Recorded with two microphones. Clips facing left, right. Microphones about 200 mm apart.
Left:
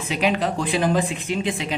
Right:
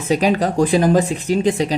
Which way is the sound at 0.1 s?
40° right (ahead or behind).